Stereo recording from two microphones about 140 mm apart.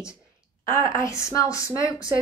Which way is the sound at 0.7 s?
20° left (ahead or behind).